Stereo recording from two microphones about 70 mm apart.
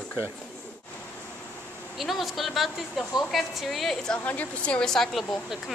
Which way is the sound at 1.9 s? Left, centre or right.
Centre.